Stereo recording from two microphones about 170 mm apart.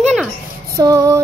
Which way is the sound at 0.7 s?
20° right (ahead or behind).